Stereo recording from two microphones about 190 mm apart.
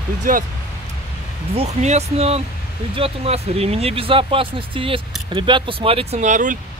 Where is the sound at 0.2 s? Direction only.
45° right (ahead or behind).